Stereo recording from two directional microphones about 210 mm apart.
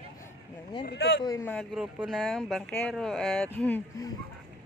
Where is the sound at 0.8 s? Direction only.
55° left (ahead or behind).